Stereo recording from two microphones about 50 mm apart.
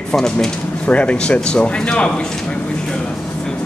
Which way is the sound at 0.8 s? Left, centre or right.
Left.